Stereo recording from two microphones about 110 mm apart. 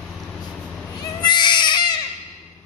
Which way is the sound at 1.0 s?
40° left (ahead or behind).